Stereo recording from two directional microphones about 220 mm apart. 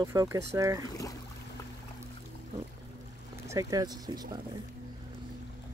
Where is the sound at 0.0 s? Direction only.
15° right (ahead or behind).